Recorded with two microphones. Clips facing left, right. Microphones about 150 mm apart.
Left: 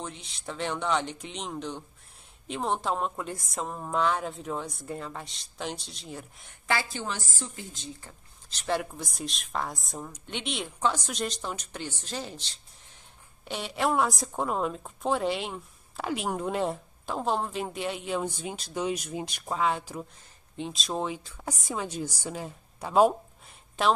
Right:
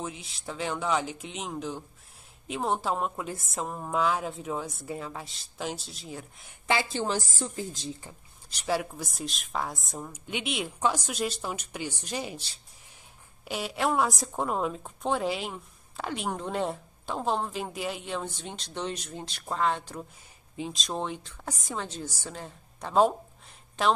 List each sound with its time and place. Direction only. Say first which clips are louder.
0.0 s a woman's voice: right 2 dB; 5° right (ahead or behind)
6.7 s a woman's voice: right 3 dB; 25° right (ahead or behind)
8.0 s a woman's voice: right 2 dB; 10° right (ahead or behind); by 23.1 s 10° left (ahead or behind)